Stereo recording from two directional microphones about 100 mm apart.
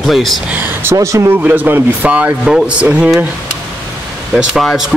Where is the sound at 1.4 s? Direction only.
15° right (ahead or behind).